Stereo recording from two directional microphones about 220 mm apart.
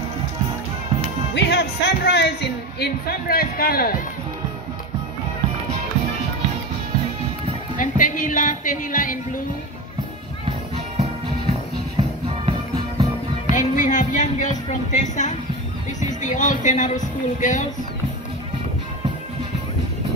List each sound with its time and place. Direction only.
1.3 s speech: 50° left (ahead or behind)
7.7 s speech: 35° left (ahead or behind)
12.0 s music: 25° right (ahead or behind)
13.5 s speech: 35° left (ahead or behind)